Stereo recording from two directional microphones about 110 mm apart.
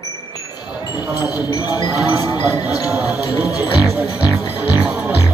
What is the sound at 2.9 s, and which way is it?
Speech, 15° right (ahead or behind).